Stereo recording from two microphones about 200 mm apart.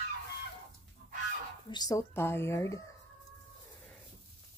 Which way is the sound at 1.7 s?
20° left (ahead or behind).